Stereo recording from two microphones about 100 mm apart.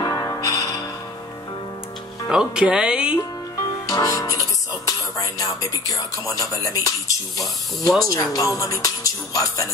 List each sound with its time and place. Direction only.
0.0 s music: 35° left (ahead or behind)
2.2 s speech: 10° right (ahead or behind)
3.8 s music: 40° left (ahead or behind)
4.8 s speech: 35° left (ahead or behind)